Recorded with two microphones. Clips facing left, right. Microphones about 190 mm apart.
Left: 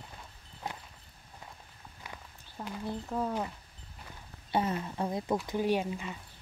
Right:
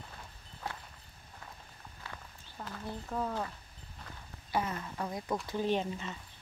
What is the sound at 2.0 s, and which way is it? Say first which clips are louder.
Speech: left 1 dB; 15° left (ahead or behind).